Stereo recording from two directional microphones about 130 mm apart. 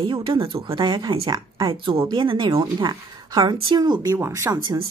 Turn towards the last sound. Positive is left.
turn(degrees=-25)  # may be behind; listen again after turning